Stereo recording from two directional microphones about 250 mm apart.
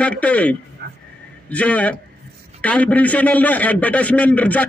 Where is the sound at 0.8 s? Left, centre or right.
Right.